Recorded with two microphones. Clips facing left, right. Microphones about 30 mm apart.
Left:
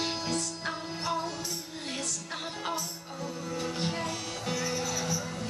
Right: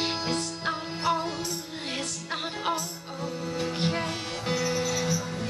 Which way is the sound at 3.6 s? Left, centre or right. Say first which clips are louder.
Right 4 dB; right.